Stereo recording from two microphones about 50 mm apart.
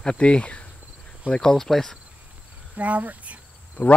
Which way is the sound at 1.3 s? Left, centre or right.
Centre.